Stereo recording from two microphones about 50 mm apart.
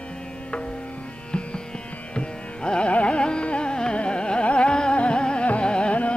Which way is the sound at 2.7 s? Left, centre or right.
Left.